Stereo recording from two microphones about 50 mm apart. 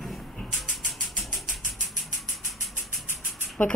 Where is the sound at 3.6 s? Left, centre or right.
Left.